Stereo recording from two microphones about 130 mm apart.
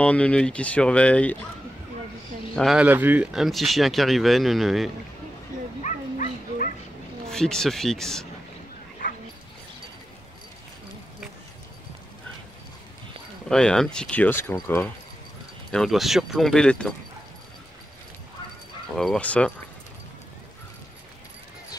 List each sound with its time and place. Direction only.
0.0 s speech: 10° left (ahead or behind)
2.5 s speech: centre (ahead or behind)
2.8 s speech: 15° right (ahead or behind)
3.3 s speech: centre (ahead or behind)
5.8 s bow-wow: 75° left (ahead or behind)
7.3 s speech: 5° left (ahead or behind)
9.0 s dog: 90° left
13.5 s speech: 5° left (ahead or behind)
15.7 s speech: centre (ahead or behind)
18.9 s speech: 5° left (ahead or behind)